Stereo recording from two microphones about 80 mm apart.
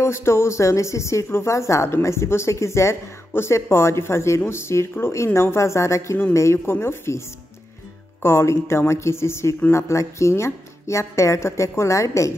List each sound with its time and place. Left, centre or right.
0.0 s a woman's voice: left